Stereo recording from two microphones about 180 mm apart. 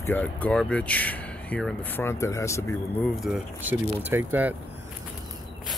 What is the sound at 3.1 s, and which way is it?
Speech, 5° right (ahead or behind).